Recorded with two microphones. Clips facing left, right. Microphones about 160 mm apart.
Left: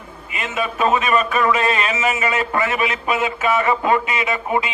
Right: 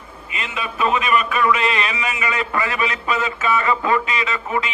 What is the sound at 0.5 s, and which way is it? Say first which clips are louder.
A man's voice: left 3 dB; 40° left (ahead or behind).